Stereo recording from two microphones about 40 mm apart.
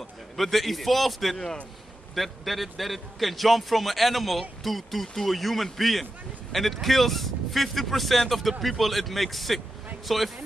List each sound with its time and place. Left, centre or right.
0.4 s a man's voice: centre